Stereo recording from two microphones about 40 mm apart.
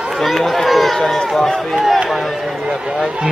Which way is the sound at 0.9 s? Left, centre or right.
Centre.